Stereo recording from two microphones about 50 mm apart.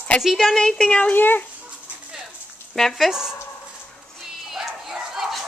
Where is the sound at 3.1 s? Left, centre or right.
Centre.